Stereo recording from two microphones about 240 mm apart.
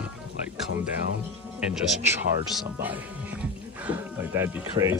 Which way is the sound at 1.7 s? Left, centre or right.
Centre.